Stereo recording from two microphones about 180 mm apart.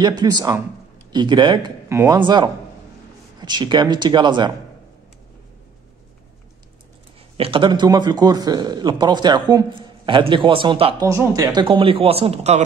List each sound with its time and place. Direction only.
0.0 s a man's voice: 25° right (ahead or behind)
7.3 s a man's voice: 30° right (ahead or behind)
11.1 s speech: 15° right (ahead or behind)
11.6 s speech: 30° right (ahead or behind)